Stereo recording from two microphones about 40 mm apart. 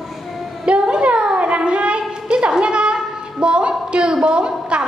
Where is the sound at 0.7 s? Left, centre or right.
Right.